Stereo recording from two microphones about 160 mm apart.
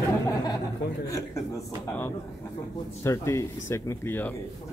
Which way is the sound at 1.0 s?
20° left (ahead or behind).